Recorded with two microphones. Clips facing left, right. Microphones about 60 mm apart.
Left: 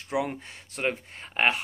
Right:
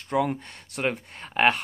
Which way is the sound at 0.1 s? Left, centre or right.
Centre.